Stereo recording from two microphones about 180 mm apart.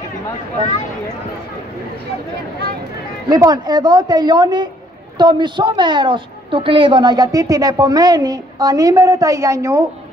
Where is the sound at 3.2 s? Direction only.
20° right (ahead or behind).